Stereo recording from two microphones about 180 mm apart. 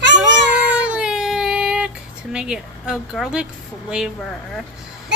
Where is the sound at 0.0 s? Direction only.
80° right.